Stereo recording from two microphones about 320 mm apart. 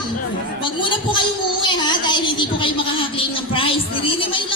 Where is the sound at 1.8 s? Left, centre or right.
Centre.